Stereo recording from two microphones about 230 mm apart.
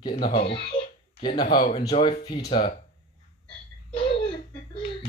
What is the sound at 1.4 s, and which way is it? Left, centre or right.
Speech, left.